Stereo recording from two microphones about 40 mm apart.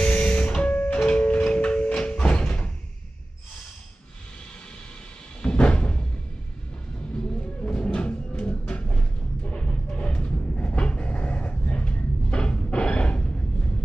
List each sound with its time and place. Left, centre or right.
0.0 s music: left
1.0 s a sound: left
5.5 s music: left
7.6 s music: left